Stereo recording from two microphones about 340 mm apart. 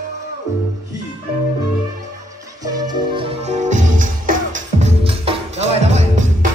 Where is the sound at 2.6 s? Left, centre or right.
Centre.